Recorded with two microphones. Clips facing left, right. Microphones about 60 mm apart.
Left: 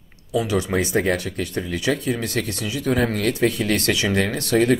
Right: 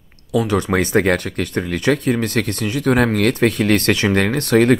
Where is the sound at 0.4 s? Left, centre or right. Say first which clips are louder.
Right 4 dB; right.